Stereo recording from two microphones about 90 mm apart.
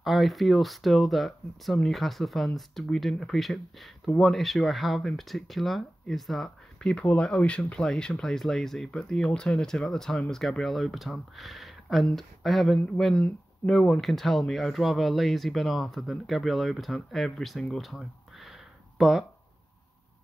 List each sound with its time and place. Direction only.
0.0 s speech: centre (ahead or behind)